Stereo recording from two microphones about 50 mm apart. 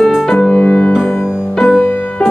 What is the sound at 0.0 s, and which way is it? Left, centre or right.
Music, centre.